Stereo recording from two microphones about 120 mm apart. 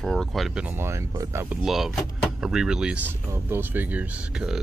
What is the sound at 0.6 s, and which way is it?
Speech, 20° right (ahead or behind).